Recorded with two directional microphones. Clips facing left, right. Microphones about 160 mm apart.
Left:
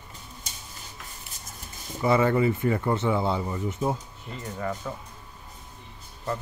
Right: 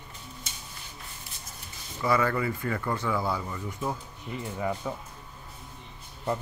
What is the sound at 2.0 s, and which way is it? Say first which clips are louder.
Speech: left 5 dB; 25° left (ahead or behind).